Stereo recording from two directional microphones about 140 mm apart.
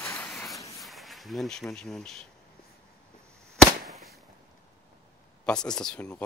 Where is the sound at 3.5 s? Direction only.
Centre (ahead or behind).